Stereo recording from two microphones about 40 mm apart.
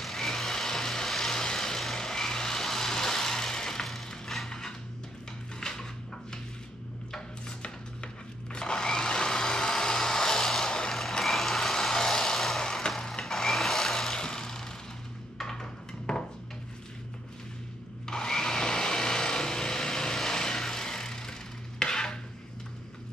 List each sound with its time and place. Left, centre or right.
0.0 s vehicle: centre
4.5 s a sound: centre
5.6 s dishes: centre
7.1 s chopping: left
8.5 s blender: centre
11.2 s vehicle: centre
13.2 s wood: centre
15.3 s a sound: centre
18.0 s a sound: centre